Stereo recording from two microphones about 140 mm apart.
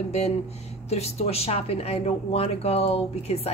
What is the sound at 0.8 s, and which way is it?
Speech, 50° left (ahead or behind).